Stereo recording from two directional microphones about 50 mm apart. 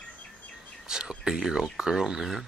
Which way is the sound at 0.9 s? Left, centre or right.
Centre.